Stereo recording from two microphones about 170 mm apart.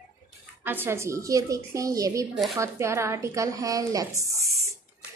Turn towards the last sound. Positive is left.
turn(degrees=-20)  # may be behind; listen again after turning